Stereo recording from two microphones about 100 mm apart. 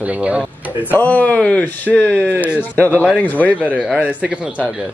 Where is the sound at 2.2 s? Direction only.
15° right (ahead or behind).